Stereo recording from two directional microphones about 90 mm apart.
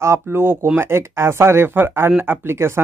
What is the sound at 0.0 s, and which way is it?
Speech, 30° right (ahead or behind).